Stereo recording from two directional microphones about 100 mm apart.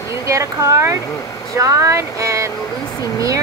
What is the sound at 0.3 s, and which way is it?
Speech, 30° right (ahead or behind).